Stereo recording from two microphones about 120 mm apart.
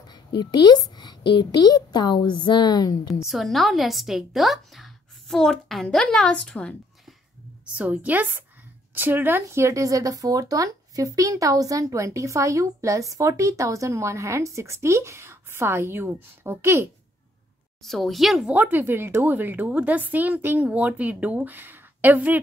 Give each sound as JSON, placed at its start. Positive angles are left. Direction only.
{"t": 0.0, "sound": "speech", "side_deg": 35}
{"t": 3.3, "sound": "a woman's voice", "side_deg": 0}
{"t": 7.6, "sound": "a woman's voice", "side_deg": -10}
{"t": 17.8, "sound": "a woman's voice", "side_deg": 0}
{"t": 18.5, "sound": "a woman's voice", "side_deg": -15}